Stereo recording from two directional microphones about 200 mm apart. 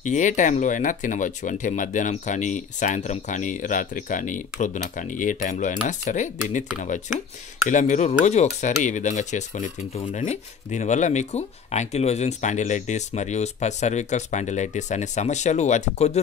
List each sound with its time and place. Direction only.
0.0 s speech: 40° left (ahead or behind)
7.7 s speech: 35° left (ahead or behind)